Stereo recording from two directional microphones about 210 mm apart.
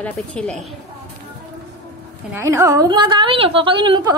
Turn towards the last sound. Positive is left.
turn(degrees=-25)  # may be behind; listen again after turning